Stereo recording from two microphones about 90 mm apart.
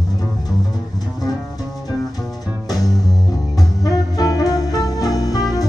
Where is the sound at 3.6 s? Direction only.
45° left (ahead or behind).